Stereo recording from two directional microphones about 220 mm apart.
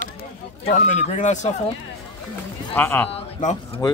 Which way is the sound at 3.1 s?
30° left (ahead or behind).